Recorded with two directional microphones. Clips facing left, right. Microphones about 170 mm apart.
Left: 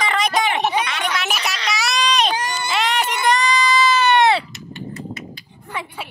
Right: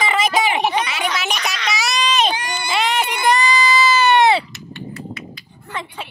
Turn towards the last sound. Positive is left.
turn(degrees=10)  # may be behind; listen again after turning